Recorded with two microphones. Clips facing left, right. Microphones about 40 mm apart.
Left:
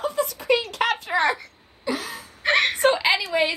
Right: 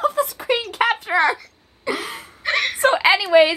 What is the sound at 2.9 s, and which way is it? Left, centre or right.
Speech, right.